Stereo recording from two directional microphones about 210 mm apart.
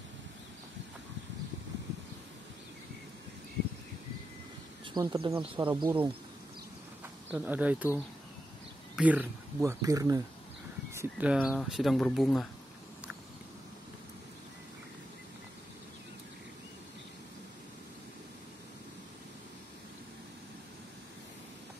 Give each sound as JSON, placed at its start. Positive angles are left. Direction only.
{"t": 4.9, "sound": "speech", "side_deg": -15}
{"t": 7.2, "sound": "speech", "side_deg": -10}